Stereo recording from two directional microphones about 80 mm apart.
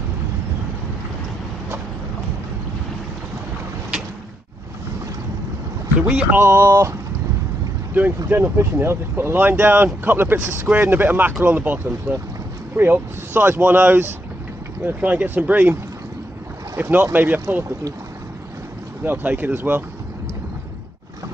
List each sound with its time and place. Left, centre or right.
5.9 s speech: right
8.3 s speech: right
19.0 s speech: right